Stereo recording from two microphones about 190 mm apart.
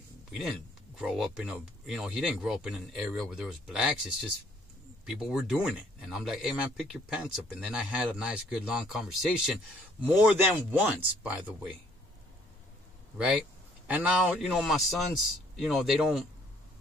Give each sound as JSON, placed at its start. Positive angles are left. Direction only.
{"t": 0.3, "sound": "speech", "side_deg": -5}
{"t": 13.8, "sound": "speech", "side_deg": -5}